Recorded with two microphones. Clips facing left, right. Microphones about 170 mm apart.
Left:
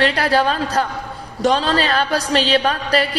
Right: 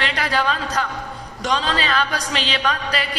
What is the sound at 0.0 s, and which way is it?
A man's voice, 40° left (ahead or behind).